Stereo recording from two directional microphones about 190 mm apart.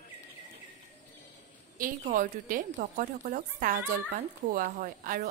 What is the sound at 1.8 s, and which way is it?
A woman's voice, 45° right (ahead or behind).